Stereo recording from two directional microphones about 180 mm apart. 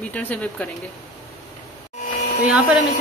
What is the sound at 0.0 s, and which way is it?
Speech, 10° left (ahead or behind).